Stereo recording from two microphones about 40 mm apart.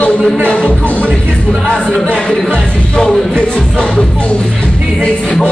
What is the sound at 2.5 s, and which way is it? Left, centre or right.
Music, centre.